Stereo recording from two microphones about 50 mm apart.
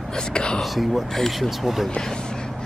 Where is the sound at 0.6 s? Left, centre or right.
Centre.